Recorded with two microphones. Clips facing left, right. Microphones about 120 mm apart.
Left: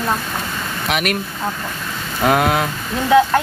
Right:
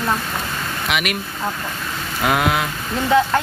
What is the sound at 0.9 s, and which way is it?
Speech, 40° left (ahead or behind).